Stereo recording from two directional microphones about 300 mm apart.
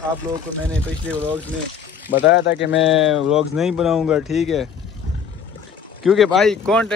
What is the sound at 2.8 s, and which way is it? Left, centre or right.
Speech, centre.